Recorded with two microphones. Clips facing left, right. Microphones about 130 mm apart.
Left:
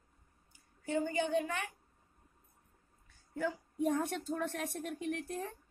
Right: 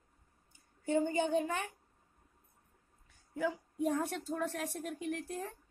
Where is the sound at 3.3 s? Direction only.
10° right (ahead or behind).